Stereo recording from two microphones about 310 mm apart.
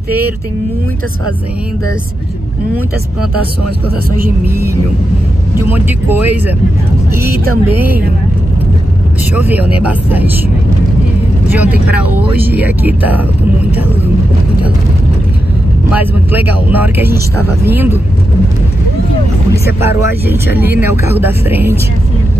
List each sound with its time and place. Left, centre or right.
4.2 s speech: right
5.6 s speech: centre
9.4 s speech: centre
11.5 s speech: centre
15.9 s speech: centre
19.8 s speech: centre